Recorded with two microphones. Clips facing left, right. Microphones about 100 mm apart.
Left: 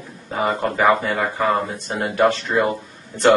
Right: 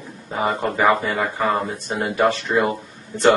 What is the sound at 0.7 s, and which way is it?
Speech, centre (ahead or behind).